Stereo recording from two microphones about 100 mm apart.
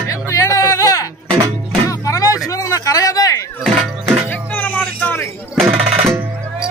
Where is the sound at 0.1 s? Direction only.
35° left (ahead or behind).